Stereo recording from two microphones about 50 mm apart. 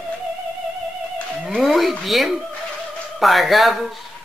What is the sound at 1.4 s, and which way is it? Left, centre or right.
Speech, centre.